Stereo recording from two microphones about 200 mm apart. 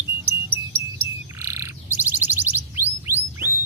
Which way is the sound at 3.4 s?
50° right (ahead or behind).